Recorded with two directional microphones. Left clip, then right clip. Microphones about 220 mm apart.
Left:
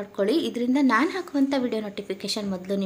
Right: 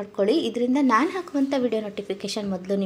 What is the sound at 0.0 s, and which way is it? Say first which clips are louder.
A woman's voice: right 2 dB; 5° right (ahead or behind).